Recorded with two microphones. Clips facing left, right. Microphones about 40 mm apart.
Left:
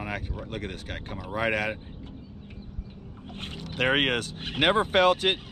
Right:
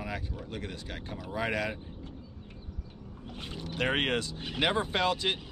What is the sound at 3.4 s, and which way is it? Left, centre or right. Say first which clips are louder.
Speech: left 4 dB; left.